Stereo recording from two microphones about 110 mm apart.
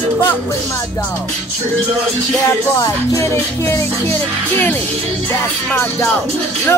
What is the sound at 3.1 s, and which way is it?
Music, 25° left (ahead or behind).